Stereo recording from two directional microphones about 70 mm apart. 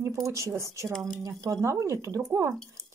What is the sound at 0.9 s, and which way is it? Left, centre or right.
Speech, centre.